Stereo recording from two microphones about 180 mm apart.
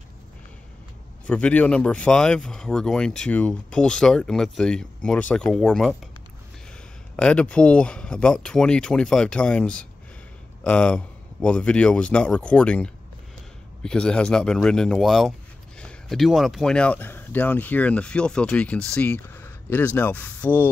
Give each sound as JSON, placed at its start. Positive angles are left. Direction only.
{"t": 1.2, "sound": "speech", "side_deg": 5}
{"t": 7.2, "sound": "speech", "side_deg": 5}